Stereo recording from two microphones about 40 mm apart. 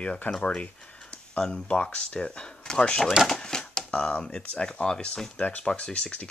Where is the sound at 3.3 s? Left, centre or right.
Centre.